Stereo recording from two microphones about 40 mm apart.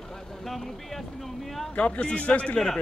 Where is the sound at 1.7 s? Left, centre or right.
Left.